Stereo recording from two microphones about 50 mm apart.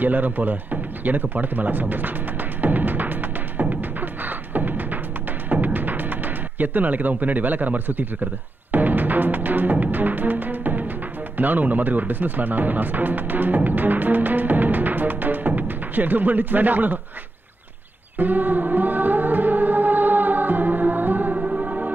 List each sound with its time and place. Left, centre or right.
0.0 s speech: right
2.6 s music: right
5.5 s speech: right
8.7 s music: right
11.3 s speech: right
13.6 s music: right
18.1 s music: right
21.4 s music: right